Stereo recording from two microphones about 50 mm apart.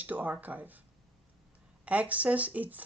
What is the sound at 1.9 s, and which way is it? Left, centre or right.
Speech, right.